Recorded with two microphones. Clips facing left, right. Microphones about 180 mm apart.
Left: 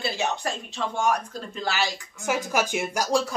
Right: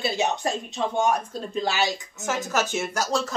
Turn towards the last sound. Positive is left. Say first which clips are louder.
# left 2 dB
turn(degrees=10)  # may be behind; listen again after turning